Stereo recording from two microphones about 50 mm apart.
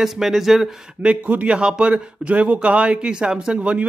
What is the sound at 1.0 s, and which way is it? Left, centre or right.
A man's voice, right.